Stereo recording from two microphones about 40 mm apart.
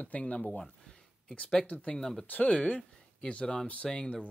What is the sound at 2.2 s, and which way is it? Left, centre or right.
Speech, left.